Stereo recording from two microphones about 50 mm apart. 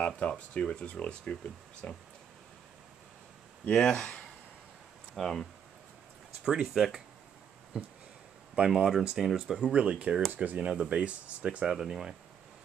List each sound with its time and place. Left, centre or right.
0.0 s speech: left
3.6 s speech: centre
5.1 s speech: centre
6.4 s speech: centre
7.7 s speech: centre
9.1 s speech: centre
9.6 s speech: right
10.6 s speech: centre